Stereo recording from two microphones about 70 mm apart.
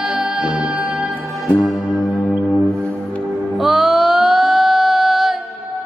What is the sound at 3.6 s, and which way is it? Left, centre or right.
Music, centre.